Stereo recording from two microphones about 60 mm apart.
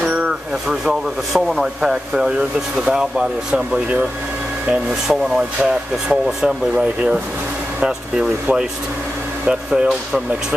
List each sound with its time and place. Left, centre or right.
0.0 s a sound: right
0.8 s speech: centre
5.7 s speech: centre
7.8 s speech: centre